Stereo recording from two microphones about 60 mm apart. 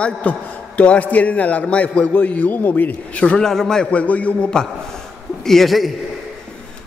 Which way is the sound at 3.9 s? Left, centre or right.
Left.